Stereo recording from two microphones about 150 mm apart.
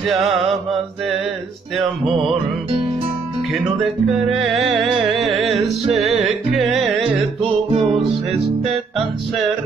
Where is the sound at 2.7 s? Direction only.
40° right (ahead or behind).